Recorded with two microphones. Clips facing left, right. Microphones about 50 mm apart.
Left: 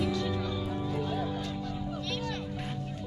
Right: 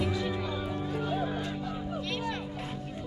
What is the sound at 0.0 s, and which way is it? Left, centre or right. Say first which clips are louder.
Music: even; centre.